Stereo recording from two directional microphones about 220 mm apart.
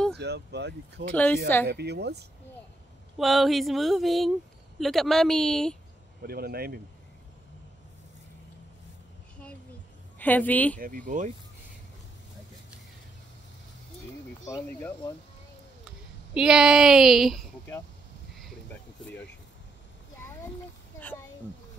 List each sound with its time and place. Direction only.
0.1 s speech: 50° right (ahead or behind)
1.1 s a woman's voice: 5° left (ahead or behind)
1.7 s speech: 50° right (ahead or behind)
3.2 s a sound: centre (ahead or behind)
6.2 s speech: 45° right (ahead or behind)
10.1 s a woman's voice: 10° left (ahead or behind)
11.1 s speech: 35° right (ahead or behind)
14.4 s a woman's voice: 10° left (ahead or behind)
16.3 s a sound: 5° right (ahead or behind)